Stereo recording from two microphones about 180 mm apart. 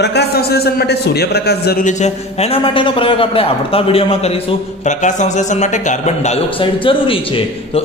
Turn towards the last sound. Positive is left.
turn(degrees=30)  # may be behind; listen again after turning